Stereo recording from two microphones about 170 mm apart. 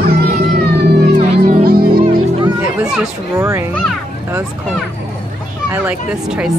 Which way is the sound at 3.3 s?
15° right (ahead or behind).